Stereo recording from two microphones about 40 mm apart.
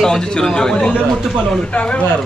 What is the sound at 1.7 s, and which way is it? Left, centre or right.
Speech, left.